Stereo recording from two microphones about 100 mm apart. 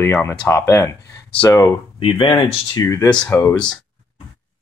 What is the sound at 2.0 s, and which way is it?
Speech, 60° left (ahead or behind).